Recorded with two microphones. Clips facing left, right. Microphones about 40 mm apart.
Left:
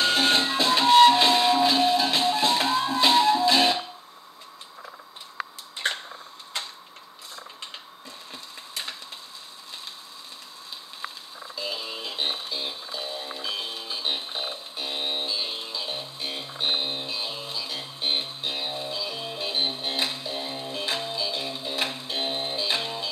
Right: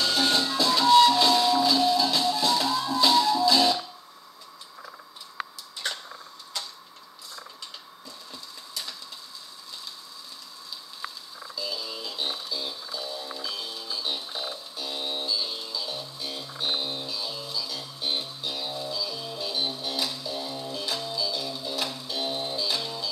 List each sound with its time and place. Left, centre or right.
0.0 s music: left
5.8 s a sound: left
6.5 s tick-tock: left
8.3 s printer: left
11.5 s music: left